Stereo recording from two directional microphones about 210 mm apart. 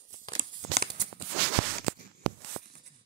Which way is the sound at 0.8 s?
50° right (ahead or behind).